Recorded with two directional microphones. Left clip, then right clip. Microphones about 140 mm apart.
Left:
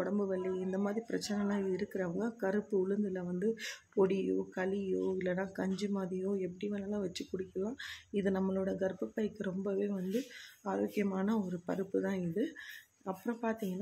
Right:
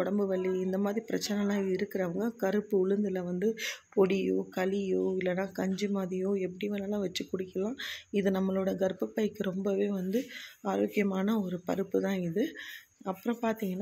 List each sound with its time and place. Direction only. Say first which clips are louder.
0.0 s speech: right 5 dB; 20° right (ahead or behind)